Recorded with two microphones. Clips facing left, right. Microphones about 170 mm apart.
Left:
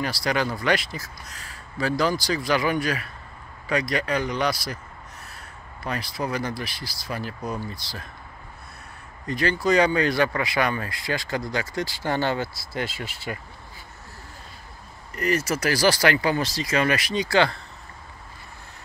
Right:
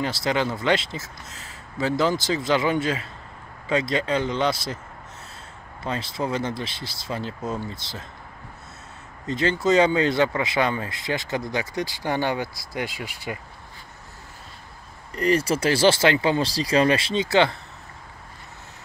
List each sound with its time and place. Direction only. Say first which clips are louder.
0.0 s speech: right 1 dB; 20° right (ahead or behind)
5.9 s speech: right 2 dB; 25° right (ahead or behind)
9.2 s speech: right 1 dB; 20° right (ahead or behind)
15.1 s speech: right 3 dB; 30° right (ahead or behind)